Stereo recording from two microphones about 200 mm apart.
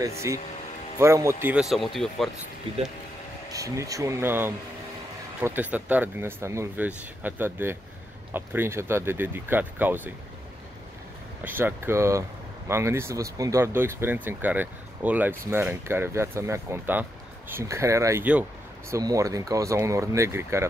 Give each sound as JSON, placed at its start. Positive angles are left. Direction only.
{"t": 0.0, "sound": "speech", "side_deg": -15}
{"t": 2.7, "sound": "speech", "side_deg": -30}
{"t": 3.5, "sound": "speech", "side_deg": -15}
{"t": 11.4, "sound": "speech", "side_deg": -10}